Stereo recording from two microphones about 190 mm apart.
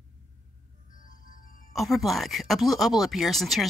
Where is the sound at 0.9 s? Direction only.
45° left (ahead or behind).